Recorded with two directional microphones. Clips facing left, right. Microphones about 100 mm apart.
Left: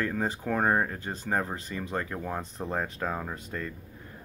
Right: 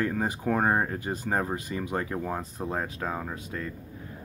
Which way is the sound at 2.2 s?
Centre (ahead or behind).